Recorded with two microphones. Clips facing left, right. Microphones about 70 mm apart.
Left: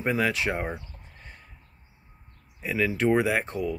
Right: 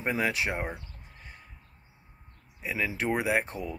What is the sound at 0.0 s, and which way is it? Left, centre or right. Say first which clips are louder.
Speech: left 3 dB; centre.